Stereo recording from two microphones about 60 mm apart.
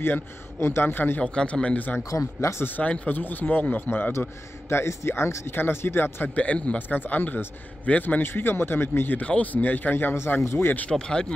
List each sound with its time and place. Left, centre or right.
0.0 s a man's voice: left
1.2 s a man's voice: centre
2.0 s speech: left
2.6 s a man's voice: left
4.6 s speech: left
5.5 s a man's voice: left
6.3 s a man's voice: left
8.2 s a man's voice: left
10.1 s speech: left
10.9 s speech: centre